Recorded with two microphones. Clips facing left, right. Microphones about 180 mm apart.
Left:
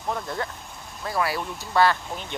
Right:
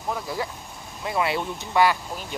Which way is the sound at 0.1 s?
5° right (ahead or behind).